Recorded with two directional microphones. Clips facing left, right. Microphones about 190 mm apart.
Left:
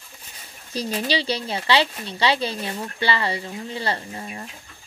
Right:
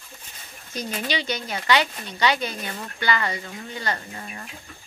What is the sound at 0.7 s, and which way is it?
Speech, 30° left (ahead or behind).